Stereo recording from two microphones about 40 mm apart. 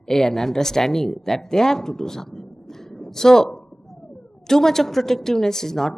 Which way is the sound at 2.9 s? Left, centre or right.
Centre.